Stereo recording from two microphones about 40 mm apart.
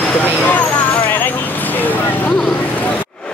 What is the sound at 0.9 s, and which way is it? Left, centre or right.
Vehicle, left.